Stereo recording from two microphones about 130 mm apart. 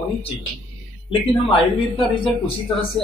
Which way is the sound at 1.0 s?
40° left (ahead or behind).